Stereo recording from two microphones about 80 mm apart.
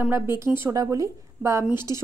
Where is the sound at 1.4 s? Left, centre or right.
Right.